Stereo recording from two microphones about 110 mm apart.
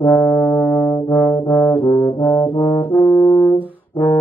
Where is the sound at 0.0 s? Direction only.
15° left (ahead or behind).